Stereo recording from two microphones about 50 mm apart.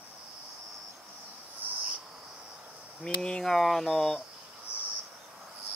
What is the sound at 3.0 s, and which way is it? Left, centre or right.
Speech, centre.